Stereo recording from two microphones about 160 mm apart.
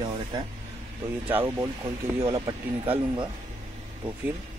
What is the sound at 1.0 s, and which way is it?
Speech, 15° right (ahead or behind).